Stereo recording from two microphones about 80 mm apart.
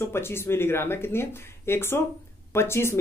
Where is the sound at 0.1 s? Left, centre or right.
Left.